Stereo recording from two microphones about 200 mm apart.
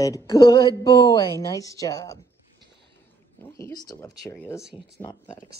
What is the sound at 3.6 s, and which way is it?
Speech, 15° left (ahead or behind).